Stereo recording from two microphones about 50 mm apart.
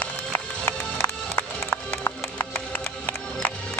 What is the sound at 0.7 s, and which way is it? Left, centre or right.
Music, left.